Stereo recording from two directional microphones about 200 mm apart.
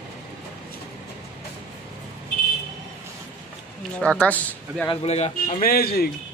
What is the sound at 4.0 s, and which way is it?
Speech, 5° left (ahead or behind).